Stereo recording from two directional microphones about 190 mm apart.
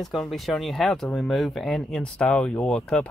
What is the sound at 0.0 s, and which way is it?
Speech, centre (ahead or behind).